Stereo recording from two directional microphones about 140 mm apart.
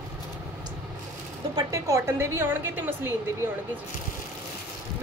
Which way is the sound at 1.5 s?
20° right (ahead or behind).